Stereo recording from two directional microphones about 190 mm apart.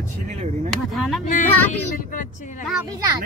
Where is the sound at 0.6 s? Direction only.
Centre (ahead or behind).